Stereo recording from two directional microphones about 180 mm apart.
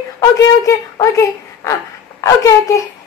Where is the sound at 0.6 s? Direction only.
15° left (ahead or behind).